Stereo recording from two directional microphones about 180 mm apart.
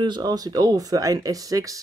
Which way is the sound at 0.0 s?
25° right (ahead or behind).